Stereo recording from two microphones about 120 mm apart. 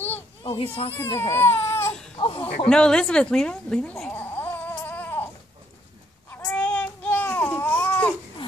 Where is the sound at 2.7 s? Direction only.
5° left (ahead or behind).